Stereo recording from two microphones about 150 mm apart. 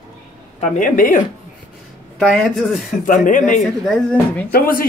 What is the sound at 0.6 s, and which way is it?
Speech, 55° left (ahead or behind).